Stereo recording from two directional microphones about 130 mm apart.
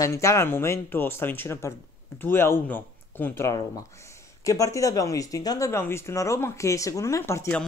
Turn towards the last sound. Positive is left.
turn(degrees=20)  # may be behind; listen again after turning